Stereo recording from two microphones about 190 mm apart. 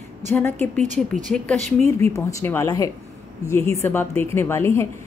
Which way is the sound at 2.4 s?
15° left (ahead or behind).